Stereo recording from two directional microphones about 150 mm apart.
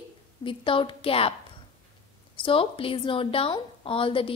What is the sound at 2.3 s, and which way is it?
A woman's voice, 35° left (ahead or behind).